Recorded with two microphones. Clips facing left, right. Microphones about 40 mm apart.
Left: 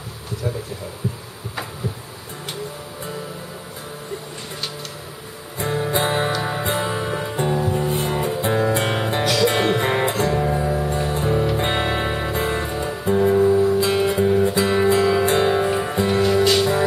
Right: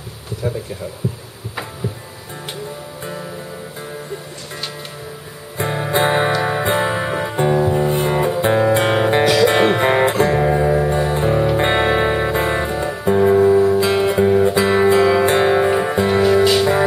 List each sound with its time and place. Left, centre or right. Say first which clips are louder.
5.6 s music: right 3 dB; right
10.3 s music: right 5 dB; right